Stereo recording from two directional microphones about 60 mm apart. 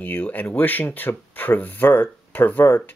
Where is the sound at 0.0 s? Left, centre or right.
Left.